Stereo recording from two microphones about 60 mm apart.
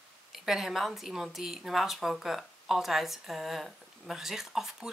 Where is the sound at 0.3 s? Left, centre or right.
Centre.